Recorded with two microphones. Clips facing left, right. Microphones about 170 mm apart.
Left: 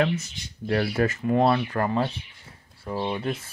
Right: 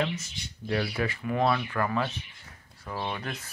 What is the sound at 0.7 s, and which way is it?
Speech, 50° left (ahead or behind).